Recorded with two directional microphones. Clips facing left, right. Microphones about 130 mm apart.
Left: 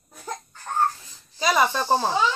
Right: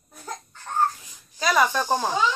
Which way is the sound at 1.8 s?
15° right (ahead or behind).